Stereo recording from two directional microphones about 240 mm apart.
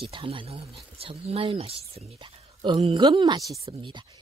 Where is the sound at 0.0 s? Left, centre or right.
Right.